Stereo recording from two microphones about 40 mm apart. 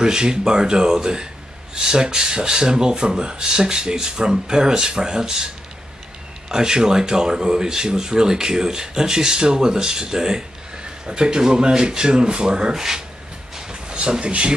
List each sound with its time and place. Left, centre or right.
0.0 s speech: centre
6.5 s speech: centre
13.6 s a sound: centre
13.9 s speech: right